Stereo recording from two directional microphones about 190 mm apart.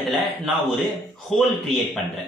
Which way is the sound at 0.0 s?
Centre (ahead or behind).